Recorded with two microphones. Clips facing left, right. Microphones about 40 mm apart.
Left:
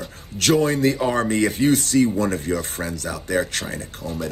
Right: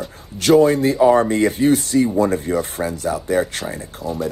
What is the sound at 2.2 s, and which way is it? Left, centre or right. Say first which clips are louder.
Speech: right 5 dB; right.